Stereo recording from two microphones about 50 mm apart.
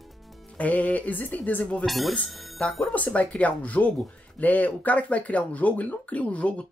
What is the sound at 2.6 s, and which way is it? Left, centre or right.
Speech, left.